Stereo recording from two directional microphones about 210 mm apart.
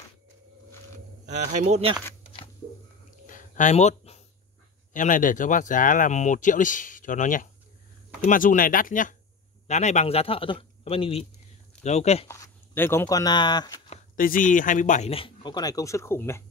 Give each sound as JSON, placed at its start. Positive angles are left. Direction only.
{"t": 1.5, "sound": "speech", "side_deg": -35}
{"t": 3.3, "sound": "a sound", "side_deg": 40}
{"t": 4.9, "sound": "speech", "side_deg": 40}
{"t": 12.3, "sound": "speech", "side_deg": 10}
{"t": 14.1, "sound": "speech", "side_deg": 40}